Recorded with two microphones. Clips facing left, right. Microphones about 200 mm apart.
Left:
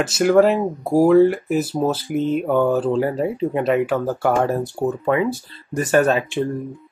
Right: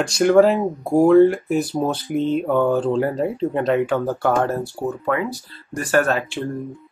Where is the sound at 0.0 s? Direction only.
Centre (ahead or behind).